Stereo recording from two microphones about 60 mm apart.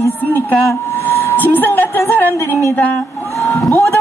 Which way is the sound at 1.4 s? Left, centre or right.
Left.